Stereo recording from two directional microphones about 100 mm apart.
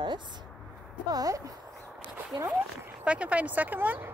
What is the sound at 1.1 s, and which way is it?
Speech, 35° right (ahead or behind).